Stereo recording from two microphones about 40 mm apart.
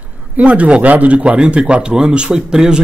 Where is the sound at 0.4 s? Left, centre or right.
Right.